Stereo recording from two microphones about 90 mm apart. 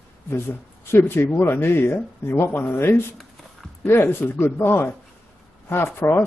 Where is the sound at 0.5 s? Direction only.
25° left (ahead or behind).